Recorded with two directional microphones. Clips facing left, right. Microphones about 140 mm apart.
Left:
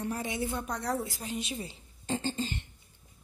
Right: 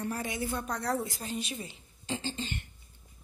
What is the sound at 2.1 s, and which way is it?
Speech, 45° left (ahead or behind).